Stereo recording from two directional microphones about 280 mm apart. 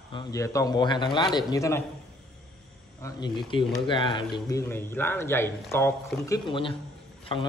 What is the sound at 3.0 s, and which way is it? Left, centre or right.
Speech, centre.